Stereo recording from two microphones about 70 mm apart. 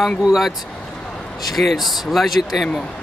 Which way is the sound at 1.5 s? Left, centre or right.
Centre.